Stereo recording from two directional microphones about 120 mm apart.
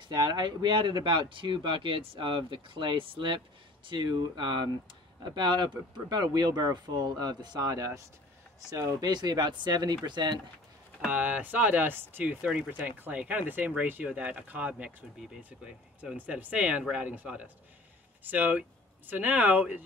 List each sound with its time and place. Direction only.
0.0 s speech: 40° right (ahead or behind)
11.0 s speech: 10° right (ahead or behind)